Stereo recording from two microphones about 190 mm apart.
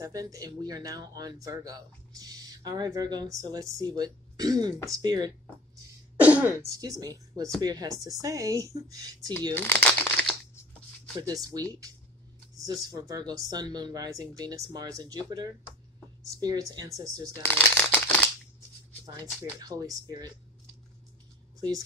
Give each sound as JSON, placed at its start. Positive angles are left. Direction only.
{"t": 0.0, "sound": "speech", "side_deg": -20}
{"t": 6.2, "sound": "speech", "side_deg": -10}
{"t": 9.5, "sound": "crumpling", "side_deg": 10}
{"t": 11.1, "sound": "speech", "side_deg": -20}
{"t": 12.6, "sound": "speech", "side_deg": -20}
{"t": 17.3, "sound": "shuffling cards", "side_deg": 10}
{"t": 19.6, "sound": "speech", "side_deg": -20}
{"t": 21.5, "sound": "speech", "side_deg": -20}